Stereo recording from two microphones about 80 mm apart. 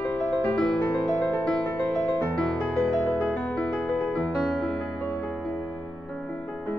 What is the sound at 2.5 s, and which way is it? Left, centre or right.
Music, centre.